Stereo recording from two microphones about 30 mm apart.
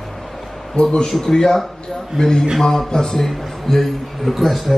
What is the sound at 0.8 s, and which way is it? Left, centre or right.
Speech, left.